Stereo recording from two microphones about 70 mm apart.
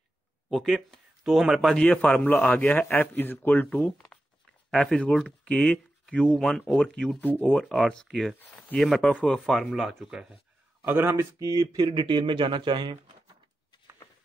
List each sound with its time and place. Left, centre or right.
0.5 s speech: centre
1.6 s a man's voice: centre; by 3.8 s left
3.8 s a man's voice: centre
7.2 s speech: left
7.5 s speech: centre
9.1 s a man's voice: centre
9.4 s speech: centre
10.9 s speech: right
11.4 s speech: right